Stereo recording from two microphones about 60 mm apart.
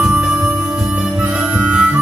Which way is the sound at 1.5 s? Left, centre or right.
Centre.